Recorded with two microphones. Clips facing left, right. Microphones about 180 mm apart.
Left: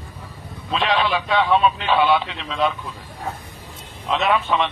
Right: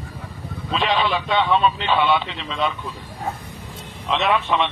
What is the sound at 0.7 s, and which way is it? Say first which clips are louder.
A man's voice: left 1 dB; centre (ahead or behind).